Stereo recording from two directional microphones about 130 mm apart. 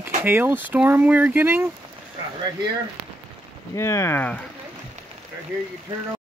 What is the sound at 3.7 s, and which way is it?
Speech, 20° left (ahead or behind).